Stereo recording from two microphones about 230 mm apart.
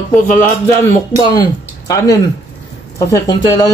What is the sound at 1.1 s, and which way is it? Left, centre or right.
Speech, centre.